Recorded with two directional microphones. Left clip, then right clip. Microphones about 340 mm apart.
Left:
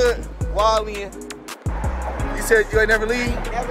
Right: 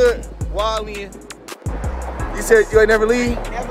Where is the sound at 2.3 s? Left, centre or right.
Centre.